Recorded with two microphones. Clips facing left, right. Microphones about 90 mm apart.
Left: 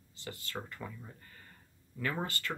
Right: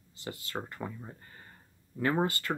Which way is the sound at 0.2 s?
30° right (ahead or behind).